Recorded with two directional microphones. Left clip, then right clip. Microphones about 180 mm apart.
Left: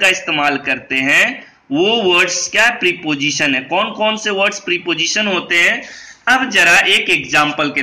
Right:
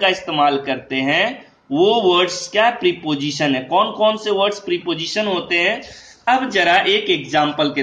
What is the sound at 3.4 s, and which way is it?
Speech, centre (ahead or behind).